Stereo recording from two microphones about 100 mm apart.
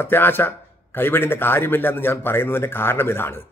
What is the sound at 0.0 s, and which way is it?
A man's voice, 20° left (ahead or behind).